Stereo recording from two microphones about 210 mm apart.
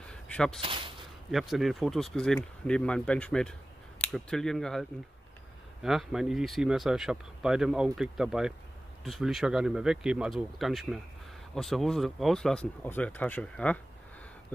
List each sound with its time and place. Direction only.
0.1 s a sound: 5° left (ahead or behind)
0.6 s speech: 25° right (ahead or behind)
1.3 s speech: centre (ahead or behind)